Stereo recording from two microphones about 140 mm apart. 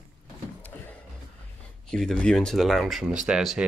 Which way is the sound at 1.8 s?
5° left (ahead or behind).